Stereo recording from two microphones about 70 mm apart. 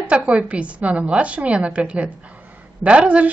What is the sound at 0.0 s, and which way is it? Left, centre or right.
A woman's voice, centre.